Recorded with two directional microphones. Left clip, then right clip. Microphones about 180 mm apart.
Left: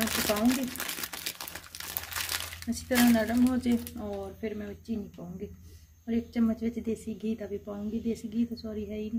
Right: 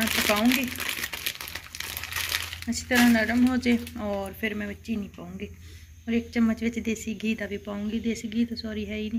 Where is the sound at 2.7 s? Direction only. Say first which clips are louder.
Right 4 dB; 15° left (ahead or behind).